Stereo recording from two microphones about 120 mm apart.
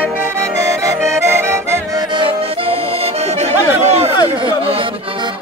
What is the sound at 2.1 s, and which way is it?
Music, 45° right (ahead or behind).